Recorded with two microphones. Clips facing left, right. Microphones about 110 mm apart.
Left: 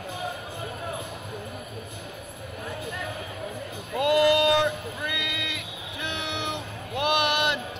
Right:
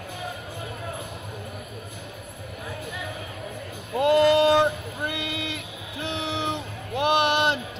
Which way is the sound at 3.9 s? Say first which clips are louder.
Right 2 dB; 30° right (ahead or behind).